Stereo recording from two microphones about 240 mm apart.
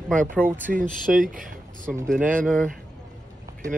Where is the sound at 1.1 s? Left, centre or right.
Right.